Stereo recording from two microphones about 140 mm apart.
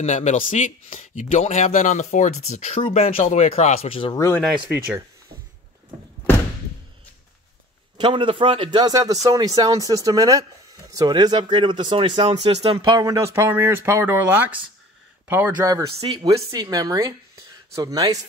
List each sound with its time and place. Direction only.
0.0 s speech: 60° left (ahead or behind); by 4.2 s 40° left (ahead or behind)
4.6 s speech: 15° right (ahead or behind)
8.0 s speech: 40° right (ahead or behind)
13.0 s speech: 20° right (ahead or behind)
16.1 s speech: 25° right (ahead or behind)